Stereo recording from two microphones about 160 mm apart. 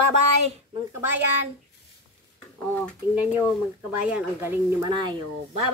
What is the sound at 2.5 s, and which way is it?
Speech, 10° left (ahead or behind).